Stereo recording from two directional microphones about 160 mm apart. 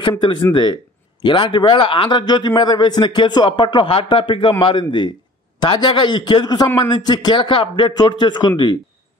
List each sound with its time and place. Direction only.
0.5 s a man's voice: 30° left (ahead or behind)